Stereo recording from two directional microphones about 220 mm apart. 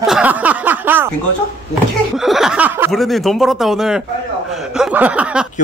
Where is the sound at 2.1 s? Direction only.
Centre (ahead or behind).